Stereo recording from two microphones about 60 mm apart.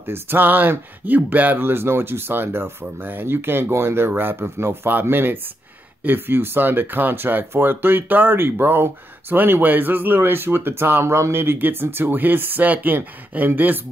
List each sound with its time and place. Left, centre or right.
0.0 s speech: right